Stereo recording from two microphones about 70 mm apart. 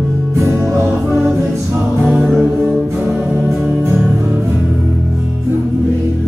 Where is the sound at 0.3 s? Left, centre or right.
Right.